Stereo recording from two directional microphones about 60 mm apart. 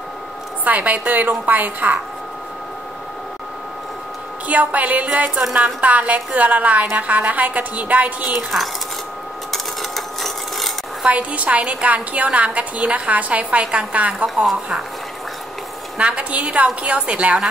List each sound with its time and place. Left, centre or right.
0.7 s a woman's voice: right
4.5 s a woman's voice: right
8.5 s a woman's voice: centre
9.5 s sewing machine: centre
11.1 s a woman's voice: right
14.2 s a woman's voice: centre
16.0 s a woman's voice: right